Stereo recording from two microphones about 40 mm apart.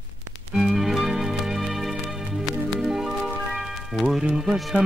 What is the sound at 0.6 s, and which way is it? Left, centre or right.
Music, centre.